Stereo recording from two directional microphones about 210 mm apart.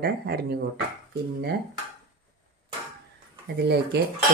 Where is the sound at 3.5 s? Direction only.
50° right (ahead or behind).